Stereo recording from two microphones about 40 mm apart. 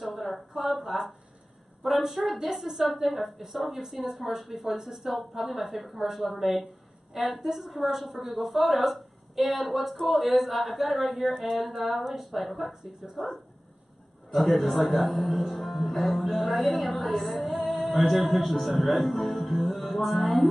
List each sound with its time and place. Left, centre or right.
0.0 s a woman's voice: centre